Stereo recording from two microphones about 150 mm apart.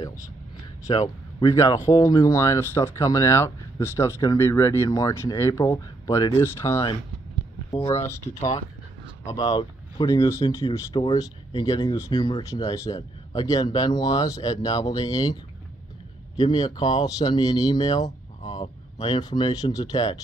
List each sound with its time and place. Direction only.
0.8 s speech: 25° left (ahead or behind)
7.7 s speech: 40° left (ahead or behind)
9.2 s speech: 25° left (ahead or behind)
16.3 s speech: 30° left (ahead or behind)